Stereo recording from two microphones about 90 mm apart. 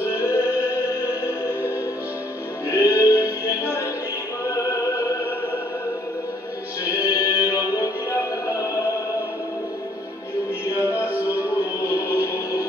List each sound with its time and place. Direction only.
0.2 s music: 35° left (ahead or behind)
2.7 s music: 35° left (ahead or behind)
6.8 s music: 40° left (ahead or behind)
10.8 s music: 30° left (ahead or behind)